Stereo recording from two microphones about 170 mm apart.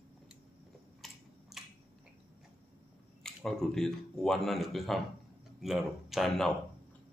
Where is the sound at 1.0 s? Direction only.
Centre (ahead or behind).